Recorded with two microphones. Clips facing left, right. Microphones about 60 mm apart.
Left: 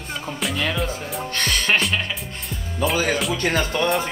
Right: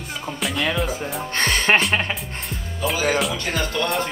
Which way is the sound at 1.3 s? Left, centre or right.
Right.